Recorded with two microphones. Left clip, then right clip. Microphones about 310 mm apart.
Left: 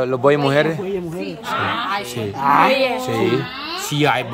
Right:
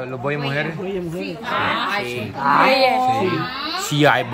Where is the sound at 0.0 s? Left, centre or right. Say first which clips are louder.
Left 9 dB; left.